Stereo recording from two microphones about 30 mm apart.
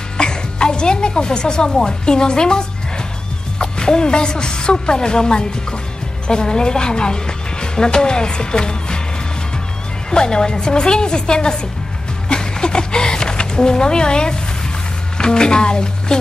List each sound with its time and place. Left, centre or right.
0.2 s a woman's voice: left
10.1 s a woman's voice: left
12.3 s a sound: left
15.1 s speech: left